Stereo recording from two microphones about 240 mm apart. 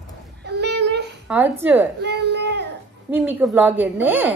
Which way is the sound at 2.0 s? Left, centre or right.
Right.